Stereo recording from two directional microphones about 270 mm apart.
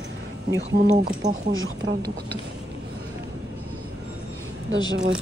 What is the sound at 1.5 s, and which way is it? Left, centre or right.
Speech, right.